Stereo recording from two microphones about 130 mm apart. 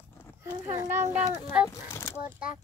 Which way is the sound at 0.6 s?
20° right (ahead or behind).